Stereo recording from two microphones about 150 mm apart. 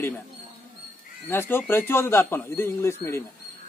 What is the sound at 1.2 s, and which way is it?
Speech, 15° left (ahead or behind).